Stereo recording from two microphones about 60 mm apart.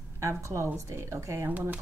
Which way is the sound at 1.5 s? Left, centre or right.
Right.